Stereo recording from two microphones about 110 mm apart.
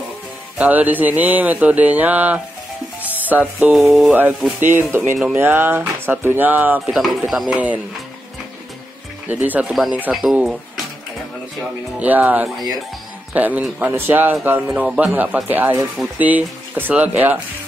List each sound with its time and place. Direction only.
0.6 s speech: 15° right (ahead or behind)
4.6 s speech: 20° right (ahead or behind)
6.9 s speech: centre (ahead or behind)
7.5 s speech: 15° right (ahead or behind)
9.3 s speech: 15° right (ahead or behind)
12.0 s speech: 15° right (ahead or behind)